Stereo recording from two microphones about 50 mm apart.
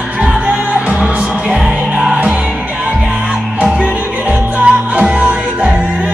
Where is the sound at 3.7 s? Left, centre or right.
Right.